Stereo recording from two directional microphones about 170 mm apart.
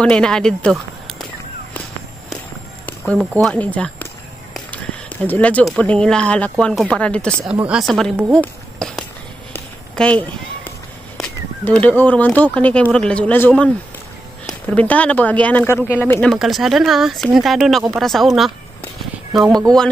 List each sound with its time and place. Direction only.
0.0 s speech: 5° left (ahead or behind)
3.1 s speech: centre (ahead or behind)
4.6 s a sound: 10° left (ahead or behind)
5.8 s speech: 5° left (ahead or behind)
9.5 s walk: 5° left (ahead or behind)
11.1 s a sound: 5° left (ahead or behind)
12.0 s speech: 10° left (ahead or behind)